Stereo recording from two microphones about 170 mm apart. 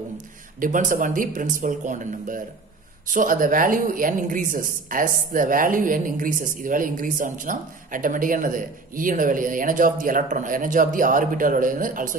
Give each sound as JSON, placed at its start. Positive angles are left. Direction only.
{"t": 0.6, "sound": "speech", "side_deg": -50}